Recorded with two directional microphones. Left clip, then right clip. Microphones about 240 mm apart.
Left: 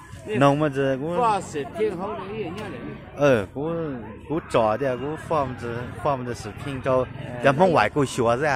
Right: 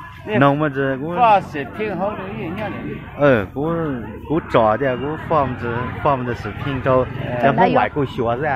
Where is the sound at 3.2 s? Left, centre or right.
Centre.